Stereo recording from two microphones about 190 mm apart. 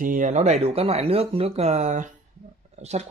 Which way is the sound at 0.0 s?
45° right (ahead or behind).